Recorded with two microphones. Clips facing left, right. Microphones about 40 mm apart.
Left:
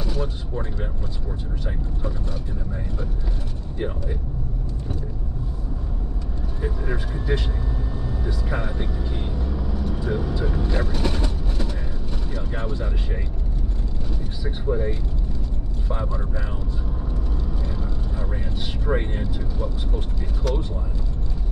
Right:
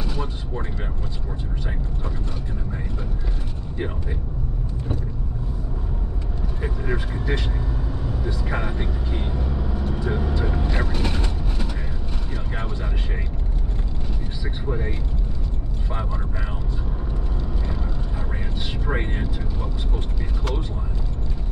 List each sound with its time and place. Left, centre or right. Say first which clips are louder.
0.0 s a sound: left 1 dB; centre
6.6 s vehicle: right 1 dB; right
8.5 s vehicle: even; centre
18.9 s vehicle: left 2 dB; right